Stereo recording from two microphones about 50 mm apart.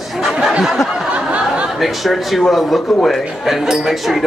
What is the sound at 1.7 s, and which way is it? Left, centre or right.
Speech, centre.